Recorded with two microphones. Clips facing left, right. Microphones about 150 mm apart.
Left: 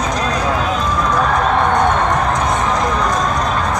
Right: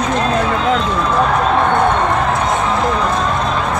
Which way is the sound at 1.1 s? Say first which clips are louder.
Right 2 dB; 5° right (ahead or behind).